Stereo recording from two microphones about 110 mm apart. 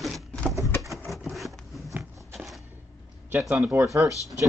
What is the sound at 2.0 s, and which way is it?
Biting, centre (ahead or behind).